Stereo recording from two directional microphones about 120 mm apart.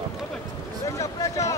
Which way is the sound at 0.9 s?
25° left (ahead or behind).